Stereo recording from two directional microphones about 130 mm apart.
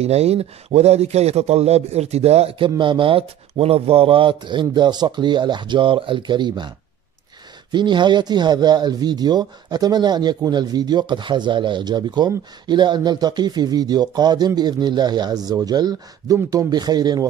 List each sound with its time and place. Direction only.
0.0 s a man's voice: 55° right (ahead or behind)
2.8 s speech: 40° right (ahead or behind)
7.7 s speech: 35° right (ahead or behind)